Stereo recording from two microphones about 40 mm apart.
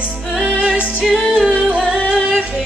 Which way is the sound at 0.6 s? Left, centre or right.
Right.